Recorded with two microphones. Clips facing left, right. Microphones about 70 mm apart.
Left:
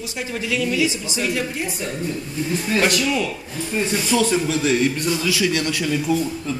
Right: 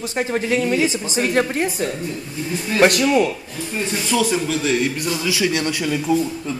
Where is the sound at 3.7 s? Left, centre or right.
Centre.